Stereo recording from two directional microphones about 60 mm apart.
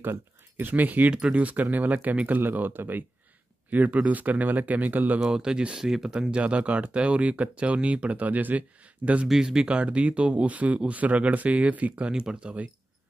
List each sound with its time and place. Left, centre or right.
0.0 s speech: right
5.2 s speech: centre
9.3 s speech: centre